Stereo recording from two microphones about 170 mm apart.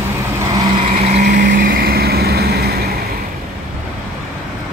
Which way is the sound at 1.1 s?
50° right (ahead or behind).